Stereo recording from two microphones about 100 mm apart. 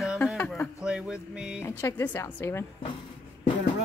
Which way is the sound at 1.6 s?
25° left (ahead or behind).